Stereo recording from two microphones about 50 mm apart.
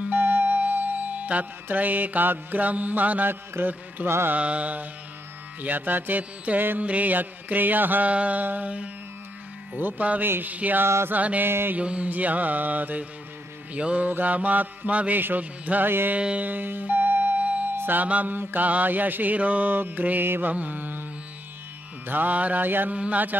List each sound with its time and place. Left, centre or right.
0.0 s music: right
3.6 s music: right
4.3 s mantra: right
10.2 s mantra: right
10.5 s mantra: right
11.4 s mantra: right
11.7 s mantra: right
13.7 s mantra: right
16.2 s mantra: right
16.4 s music: right
17.7 s music: right
18.0 s mantra: right
20.5 s mantra: right
22.0 s mantra: right